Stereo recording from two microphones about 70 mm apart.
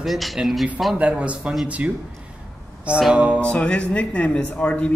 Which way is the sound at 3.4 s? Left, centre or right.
Centre.